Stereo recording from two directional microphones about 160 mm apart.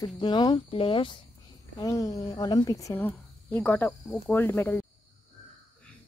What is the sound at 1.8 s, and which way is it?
Speech, 20° left (ahead or behind).